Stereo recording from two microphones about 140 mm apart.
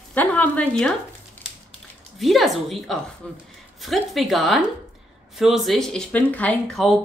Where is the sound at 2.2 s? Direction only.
Centre (ahead or behind).